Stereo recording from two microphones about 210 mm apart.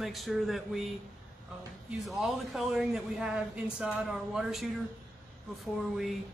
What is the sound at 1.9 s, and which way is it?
Speech, centre (ahead or behind).